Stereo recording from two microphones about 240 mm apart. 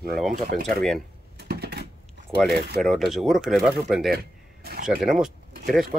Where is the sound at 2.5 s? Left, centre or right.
Right.